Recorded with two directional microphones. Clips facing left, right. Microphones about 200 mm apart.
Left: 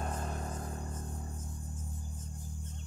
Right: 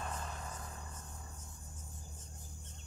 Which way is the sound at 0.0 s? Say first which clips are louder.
Left 5 dB; 50° left (ahead or behind).